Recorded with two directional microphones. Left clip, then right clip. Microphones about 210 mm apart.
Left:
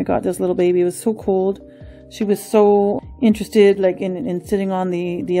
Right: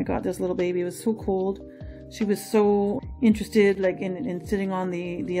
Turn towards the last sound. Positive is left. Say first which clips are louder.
# left 8 dB
turn(degrees=45)  # may be behind; listen again after turning